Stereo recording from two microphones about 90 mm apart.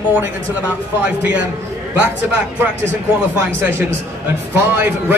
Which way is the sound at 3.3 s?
25° right (ahead or behind).